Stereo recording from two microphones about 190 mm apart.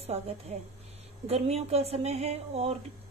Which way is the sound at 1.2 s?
35° right (ahead or behind).